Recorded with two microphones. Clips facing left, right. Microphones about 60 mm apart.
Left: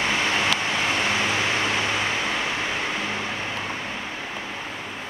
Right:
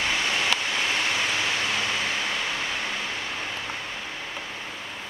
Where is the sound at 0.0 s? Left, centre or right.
Left.